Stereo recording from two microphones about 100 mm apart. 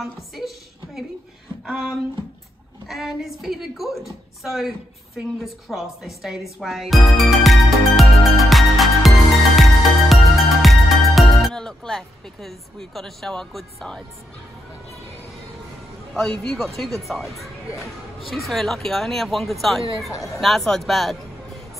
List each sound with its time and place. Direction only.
0.0 s a woman's voice: centre (ahead or behind)
1.7 s a woman's voice: 5° right (ahead or behind)
9.6 s music: centre (ahead or behind)
16.1 s speech: 5° left (ahead or behind)
20.1 s speech: 35° left (ahead or behind)
20.3 s speech: centre (ahead or behind)